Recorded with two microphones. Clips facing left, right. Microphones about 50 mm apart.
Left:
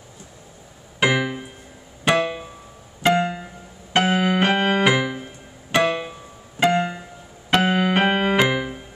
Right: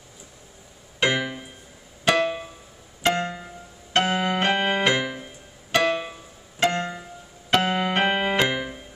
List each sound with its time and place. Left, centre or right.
0.9 s music: centre
3.0 s piano: centre
3.9 s keyboard: centre